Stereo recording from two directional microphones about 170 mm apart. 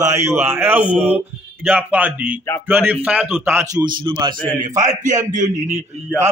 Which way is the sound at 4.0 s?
25° right (ahead or behind).